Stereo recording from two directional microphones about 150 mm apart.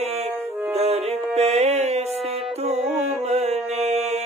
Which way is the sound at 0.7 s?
45° right (ahead or behind).